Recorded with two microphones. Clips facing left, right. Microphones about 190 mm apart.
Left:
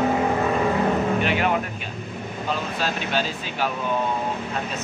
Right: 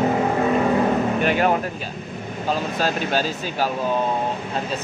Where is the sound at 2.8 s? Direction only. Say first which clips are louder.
Right 3 dB; 40° right (ahead or behind).